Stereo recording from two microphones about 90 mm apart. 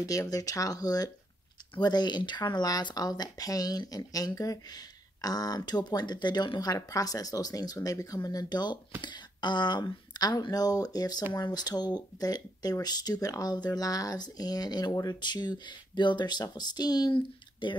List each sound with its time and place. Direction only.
0.0 s speech: 40° left (ahead or behind)
17.1 s speech: 65° left (ahead or behind)